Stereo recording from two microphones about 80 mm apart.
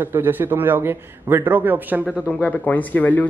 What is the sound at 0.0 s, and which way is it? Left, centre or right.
Speech, right.